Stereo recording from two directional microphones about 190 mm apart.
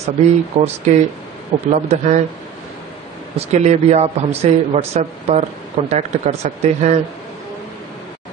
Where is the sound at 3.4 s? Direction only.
35° right (ahead or behind).